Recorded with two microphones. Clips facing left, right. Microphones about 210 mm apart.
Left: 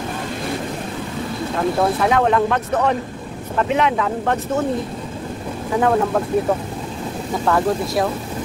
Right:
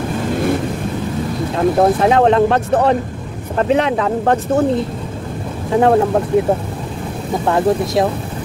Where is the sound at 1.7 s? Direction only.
35° right (ahead or behind).